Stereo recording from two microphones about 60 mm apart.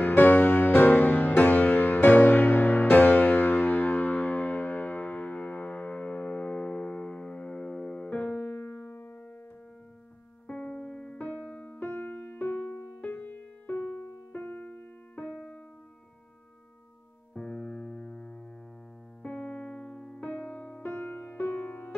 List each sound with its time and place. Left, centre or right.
0.0 s music: left; by 8.1 s centre
8.1 s music: left
10.4 s music: centre
17.3 s music: centre
19.2 s electric piano: left
20.2 s music: left